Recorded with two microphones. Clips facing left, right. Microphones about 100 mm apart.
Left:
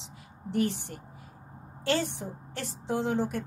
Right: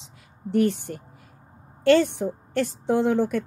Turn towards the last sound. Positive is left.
turn(degrees=-60)  # may be behind; listen again after turning